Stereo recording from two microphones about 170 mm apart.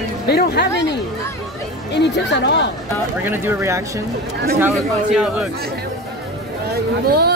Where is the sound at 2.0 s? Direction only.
90° left.